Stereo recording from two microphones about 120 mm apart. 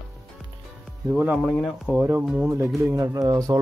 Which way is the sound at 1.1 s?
10° right (ahead or behind).